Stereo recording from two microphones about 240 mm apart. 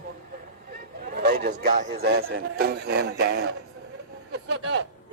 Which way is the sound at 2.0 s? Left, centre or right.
Right.